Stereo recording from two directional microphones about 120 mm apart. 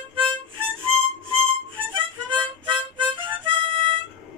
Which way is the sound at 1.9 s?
45° right (ahead or behind).